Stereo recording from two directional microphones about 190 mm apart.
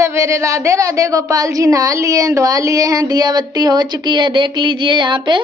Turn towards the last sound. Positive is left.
turn(degrees=-25)  # may be behind; listen again after turning